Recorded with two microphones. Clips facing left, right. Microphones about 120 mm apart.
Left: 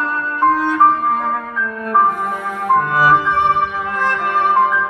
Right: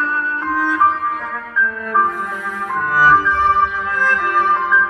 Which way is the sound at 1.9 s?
65° left (ahead or behind).